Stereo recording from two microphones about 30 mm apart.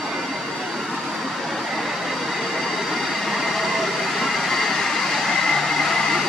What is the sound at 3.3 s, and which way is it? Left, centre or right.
Train, centre.